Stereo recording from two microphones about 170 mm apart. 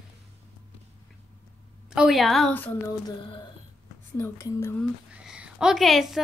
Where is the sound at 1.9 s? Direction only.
Centre (ahead or behind).